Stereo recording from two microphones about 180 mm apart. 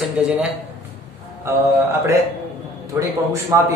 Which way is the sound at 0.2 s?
5° right (ahead or behind).